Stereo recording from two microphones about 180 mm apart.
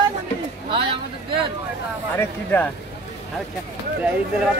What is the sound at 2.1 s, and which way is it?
Speech, 10° left (ahead or behind).